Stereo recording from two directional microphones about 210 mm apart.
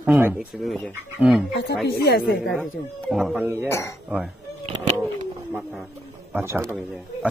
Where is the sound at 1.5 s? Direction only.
55° left (ahead or behind).